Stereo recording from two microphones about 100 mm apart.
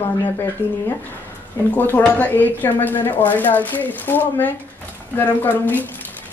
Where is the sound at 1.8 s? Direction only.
20° left (ahead or behind).